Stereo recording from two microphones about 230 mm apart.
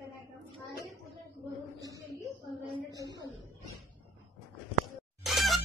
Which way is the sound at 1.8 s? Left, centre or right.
Centre.